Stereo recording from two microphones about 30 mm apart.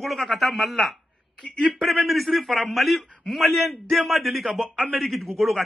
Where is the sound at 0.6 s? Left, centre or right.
Left.